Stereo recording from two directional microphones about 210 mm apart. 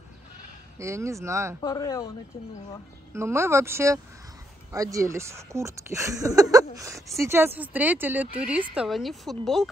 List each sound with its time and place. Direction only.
0.7 s speech: 15° right (ahead or behind)
1.6 s speech: 15° left (ahead or behind)
3.1 s speech: 10° right (ahead or behind)